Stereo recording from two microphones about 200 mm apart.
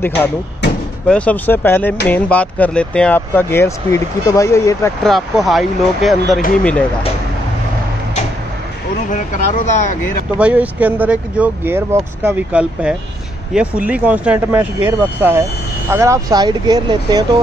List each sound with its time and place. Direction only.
1.0 s speech: 5° left (ahead or behind)
5.0 s speech: centre (ahead or behind)
9.1 s speech: 40° left (ahead or behind)
10.3 s speech: 5° right (ahead or behind)